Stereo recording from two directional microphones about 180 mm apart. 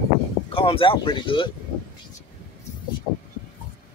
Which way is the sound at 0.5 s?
30° left (ahead or behind).